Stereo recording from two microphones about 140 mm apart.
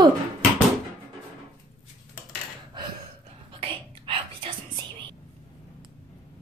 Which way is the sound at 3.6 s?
40° right (ahead or behind).